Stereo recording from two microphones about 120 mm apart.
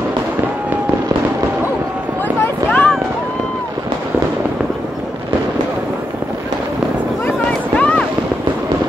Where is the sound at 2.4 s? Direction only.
15° left (ahead or behind).